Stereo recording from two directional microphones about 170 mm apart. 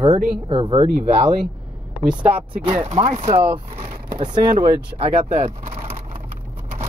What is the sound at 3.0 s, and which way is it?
Speech, 35° right (ahead or behind).